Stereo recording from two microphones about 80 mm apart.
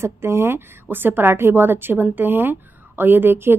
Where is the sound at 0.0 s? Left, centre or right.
Right.